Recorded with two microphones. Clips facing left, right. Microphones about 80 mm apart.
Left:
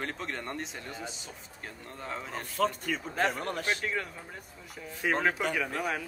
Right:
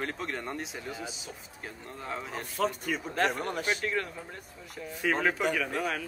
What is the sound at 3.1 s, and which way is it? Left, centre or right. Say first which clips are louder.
Speech: right 1 dB; centre.